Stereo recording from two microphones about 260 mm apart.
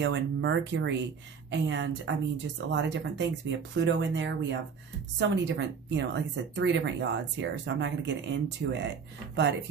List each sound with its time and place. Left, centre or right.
0.0 s speech: right